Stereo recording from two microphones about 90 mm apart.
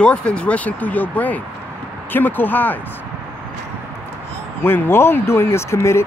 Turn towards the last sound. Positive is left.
turn(degrees=30)  # may be behind; listen again after turning